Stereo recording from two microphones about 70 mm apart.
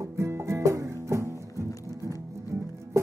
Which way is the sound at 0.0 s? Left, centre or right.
Right.